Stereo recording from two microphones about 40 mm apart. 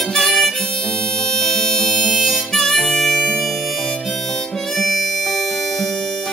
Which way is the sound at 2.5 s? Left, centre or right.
Centre.